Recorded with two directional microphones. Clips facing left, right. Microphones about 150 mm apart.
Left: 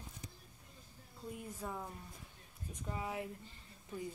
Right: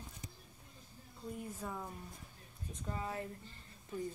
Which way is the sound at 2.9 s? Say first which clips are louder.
Even; 15° left (ahead or behind).